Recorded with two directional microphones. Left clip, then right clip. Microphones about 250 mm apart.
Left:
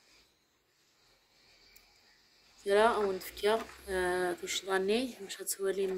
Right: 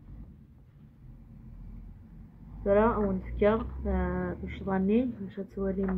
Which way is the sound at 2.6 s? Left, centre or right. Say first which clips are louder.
Right 2 dB; left.